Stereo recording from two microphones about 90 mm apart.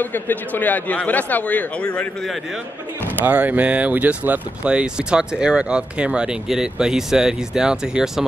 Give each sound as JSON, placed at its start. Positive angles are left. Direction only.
{"t": 0.0, "sound": "speech", "side_deg": 20}
{"t": 3.3, "sound": "speech", "side_deg": -20}